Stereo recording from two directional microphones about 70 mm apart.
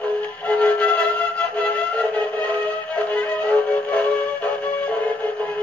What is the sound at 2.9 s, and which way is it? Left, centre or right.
Music, left.